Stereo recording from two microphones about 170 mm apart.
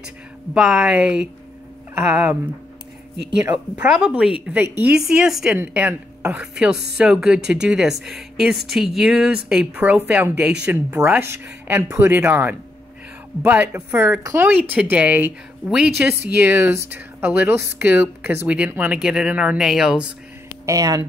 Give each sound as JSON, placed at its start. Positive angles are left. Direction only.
{"t": 0.6, "sound": "speech", "side_deg": -5}
{"t": 3.4, "sound": "speech", "side_deg": -5}
{"t": 20.6, "sound": "speech", "side_deg": -20}